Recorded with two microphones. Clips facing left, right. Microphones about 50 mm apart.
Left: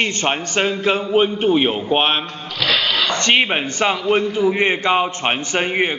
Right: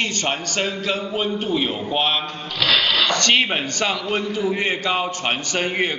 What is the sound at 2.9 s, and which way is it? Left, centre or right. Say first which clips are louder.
A man's voice: left 1 dB; left.